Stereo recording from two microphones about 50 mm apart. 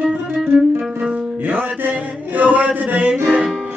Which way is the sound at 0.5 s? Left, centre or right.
Centre.